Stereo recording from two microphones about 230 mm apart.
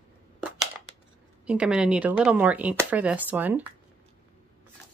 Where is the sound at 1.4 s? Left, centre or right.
Centre.